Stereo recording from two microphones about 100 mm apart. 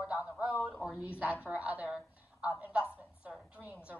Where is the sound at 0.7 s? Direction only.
5° right (ahead or behind).